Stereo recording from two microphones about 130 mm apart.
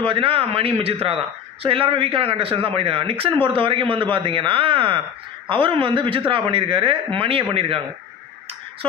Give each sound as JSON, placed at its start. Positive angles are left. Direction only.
{"t": 0.0, "sound": "a man's voice", "side_deg": -45}